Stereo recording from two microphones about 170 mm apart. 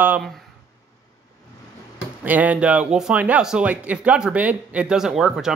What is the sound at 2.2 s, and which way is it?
Speech, 10° right (ahead or behind).